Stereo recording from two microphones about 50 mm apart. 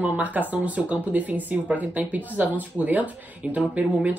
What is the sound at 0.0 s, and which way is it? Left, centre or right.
Speech, right.